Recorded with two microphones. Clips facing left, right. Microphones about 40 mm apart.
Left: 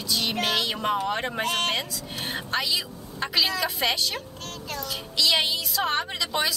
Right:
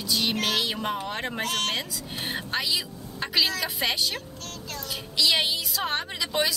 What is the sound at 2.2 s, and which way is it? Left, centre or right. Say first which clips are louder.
Speech: left 1 dB; centre.